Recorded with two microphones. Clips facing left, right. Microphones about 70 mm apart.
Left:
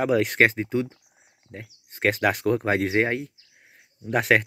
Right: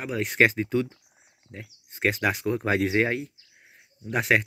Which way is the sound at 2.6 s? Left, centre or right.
Left.